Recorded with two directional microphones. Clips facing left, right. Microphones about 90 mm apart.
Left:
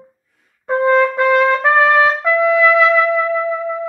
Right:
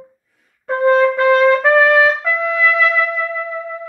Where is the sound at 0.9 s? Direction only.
20° left (ahead or behind).